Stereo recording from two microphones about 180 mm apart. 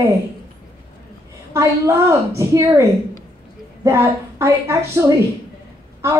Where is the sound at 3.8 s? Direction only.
15° right (ahead or behind).